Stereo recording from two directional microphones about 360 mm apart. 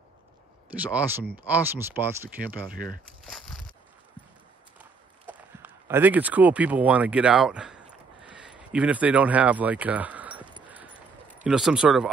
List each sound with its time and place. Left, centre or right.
0.7 s speech: centre
2.7 s speech: right
3.3 s a sound: centre
4.7 s run: centre
11.4 s speech: centre